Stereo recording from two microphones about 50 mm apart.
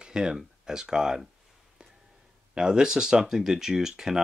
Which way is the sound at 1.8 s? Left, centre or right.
Centre.